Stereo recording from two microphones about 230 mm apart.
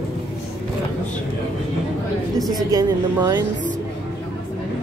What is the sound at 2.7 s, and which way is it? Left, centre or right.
Speech, centre.